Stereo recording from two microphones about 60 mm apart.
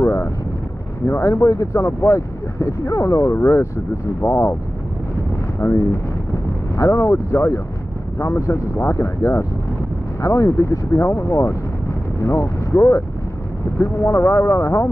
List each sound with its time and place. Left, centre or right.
0.0 s boat: left
1.0 s speech: left
5.6 s speech: left
6.8 s speech: left